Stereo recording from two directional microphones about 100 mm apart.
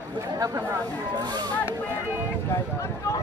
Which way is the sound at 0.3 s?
40° right (ahead or behind).